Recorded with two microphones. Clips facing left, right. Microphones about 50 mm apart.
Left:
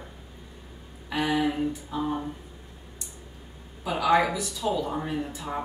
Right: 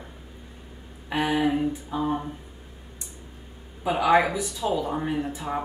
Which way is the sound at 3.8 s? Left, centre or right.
Right.